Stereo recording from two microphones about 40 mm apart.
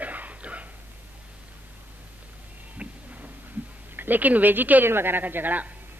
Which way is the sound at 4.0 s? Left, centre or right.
Right.